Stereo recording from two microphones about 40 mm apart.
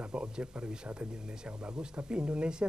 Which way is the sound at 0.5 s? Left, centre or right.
Right.